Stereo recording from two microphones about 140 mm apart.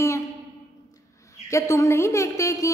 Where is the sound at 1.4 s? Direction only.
20° left (ahead or behind).